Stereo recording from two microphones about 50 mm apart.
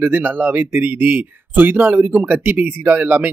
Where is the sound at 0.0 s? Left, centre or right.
Right.